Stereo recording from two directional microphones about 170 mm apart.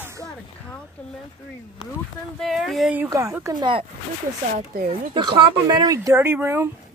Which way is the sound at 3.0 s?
15° right (ahead or behind).